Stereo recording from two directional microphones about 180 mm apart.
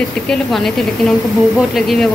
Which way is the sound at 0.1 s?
5° left (ahead or behind).